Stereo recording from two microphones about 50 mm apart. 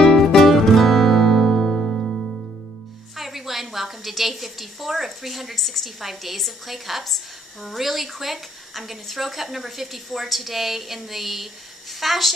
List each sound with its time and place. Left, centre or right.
0.0 s music: centre
3.2 s a woman's voice: centre